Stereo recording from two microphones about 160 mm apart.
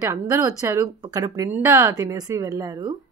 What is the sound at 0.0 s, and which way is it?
Speech, 15° right (ahead or behind).